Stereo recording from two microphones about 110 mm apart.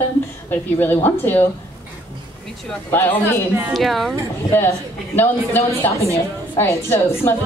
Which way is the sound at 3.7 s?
Centre (ahead or behind).